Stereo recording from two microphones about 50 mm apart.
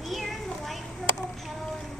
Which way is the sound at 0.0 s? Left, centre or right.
Centre.